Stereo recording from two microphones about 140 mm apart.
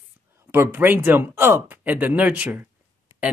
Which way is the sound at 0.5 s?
15° right (ahead or behind).